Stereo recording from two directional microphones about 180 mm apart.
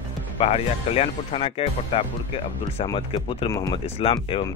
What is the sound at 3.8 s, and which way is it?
Speech, 35° left (ahead or behind).